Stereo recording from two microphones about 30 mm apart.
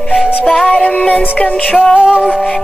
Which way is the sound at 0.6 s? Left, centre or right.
Left.